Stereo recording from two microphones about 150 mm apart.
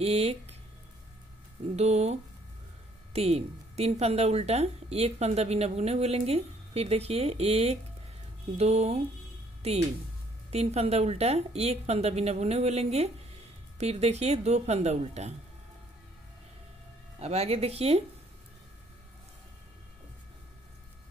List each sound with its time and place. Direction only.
0.0 s speech: 45° right (ahead or behind)
1.8 s speech: 45° right (ahead or behind)
9.6 s music: 45° right (ahead or behind)
10.5 s speech: 45° right (ahead or behind)
17.2 s speech: 45° right (ahead or behind)